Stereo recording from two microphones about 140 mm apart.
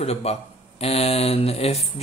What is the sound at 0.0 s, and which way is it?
Speech, 50° left (ahead or behind).